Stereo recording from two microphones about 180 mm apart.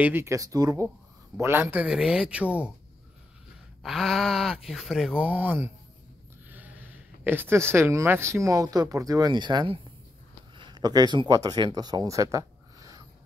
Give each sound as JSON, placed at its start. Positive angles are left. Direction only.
{"t": 0.0, "sound": "speech", "side_deg": -10}
{"t": 3.8, "sound": "speech", "side_deg": 0}
{"t": 6.5, "sound": "a sound", "side_deg": -10}
{"t": 7.2, "sound": "speech", "side_deg": -10}